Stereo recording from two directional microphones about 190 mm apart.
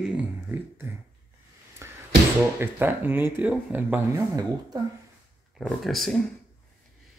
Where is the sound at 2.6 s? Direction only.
10° right (ahead or behind).